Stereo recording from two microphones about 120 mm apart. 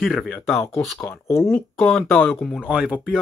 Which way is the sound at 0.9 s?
15° left (ahead or behind).